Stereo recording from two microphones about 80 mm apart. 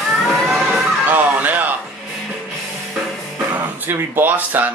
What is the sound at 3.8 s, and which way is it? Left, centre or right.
Speech, right.